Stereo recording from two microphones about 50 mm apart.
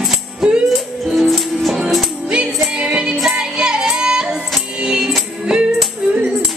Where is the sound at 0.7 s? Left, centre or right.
Centre.